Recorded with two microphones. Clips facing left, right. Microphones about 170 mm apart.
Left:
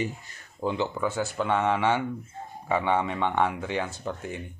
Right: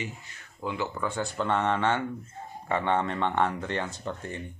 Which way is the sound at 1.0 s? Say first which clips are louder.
Left 2 dB; 5° left (ahead or behind).